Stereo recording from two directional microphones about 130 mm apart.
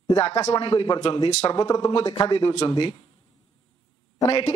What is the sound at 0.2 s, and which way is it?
Speech, 50° left (ahead or behind).